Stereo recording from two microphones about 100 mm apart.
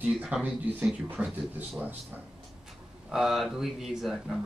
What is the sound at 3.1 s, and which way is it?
Speech, 5° right (ahead or behind).